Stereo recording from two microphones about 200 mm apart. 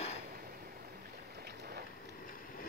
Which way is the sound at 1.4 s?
50° right (ahead or behind).